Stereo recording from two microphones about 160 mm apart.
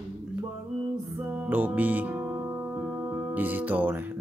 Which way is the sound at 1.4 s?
10° right (ahead or behind).